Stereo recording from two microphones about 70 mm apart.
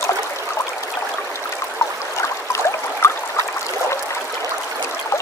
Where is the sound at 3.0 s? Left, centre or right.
Left.